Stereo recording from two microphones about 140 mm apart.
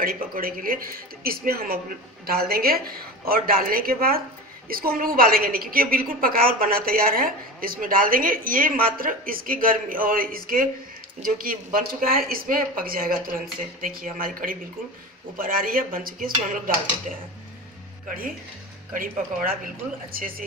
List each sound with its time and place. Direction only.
0.0 s a woman's voice: 90° right
18.9 s a woman's voice: 90° right